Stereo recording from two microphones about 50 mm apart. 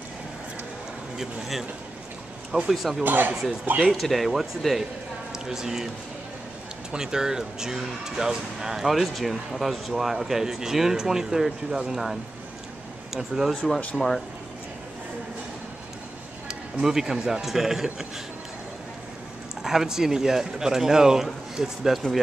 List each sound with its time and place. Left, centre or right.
1.1 s speech: centre
2.7 s speech: centre
3.0 s speech: right
3.8 s speech: centre
6.9 s speech: centre
13.9 s speech: centre
16.8 s speech: centre
19.6 s speech: centre